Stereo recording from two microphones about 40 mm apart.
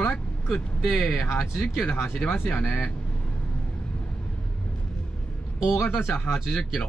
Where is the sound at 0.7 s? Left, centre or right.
Centre.